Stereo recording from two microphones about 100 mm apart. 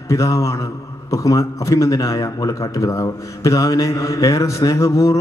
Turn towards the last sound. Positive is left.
turn(degrees=30)  # may be behind; listen again after turning